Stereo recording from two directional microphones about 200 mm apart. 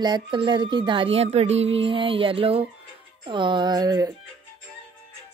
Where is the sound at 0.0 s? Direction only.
20° right (ahead or behind).